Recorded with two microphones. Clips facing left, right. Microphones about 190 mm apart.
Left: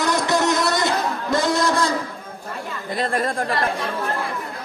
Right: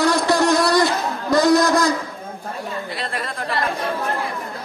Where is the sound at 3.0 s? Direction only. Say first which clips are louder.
Left 6 dB; 50° left (ahead or behind).